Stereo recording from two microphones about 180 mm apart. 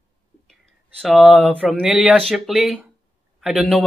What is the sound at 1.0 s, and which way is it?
Speech, centre (ahead or behind).